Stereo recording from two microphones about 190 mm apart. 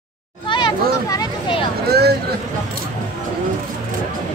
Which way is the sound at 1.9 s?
60° right (ahead or behind).